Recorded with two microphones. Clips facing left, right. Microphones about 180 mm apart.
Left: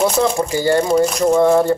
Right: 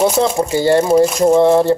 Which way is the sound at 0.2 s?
25° right (ahead or behind).